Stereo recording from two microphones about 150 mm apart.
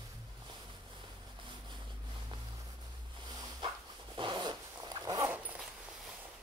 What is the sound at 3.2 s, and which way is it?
Dog, 25° right (ahead or behind).